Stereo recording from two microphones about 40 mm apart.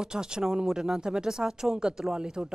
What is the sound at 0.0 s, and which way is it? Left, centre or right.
Speech, centre.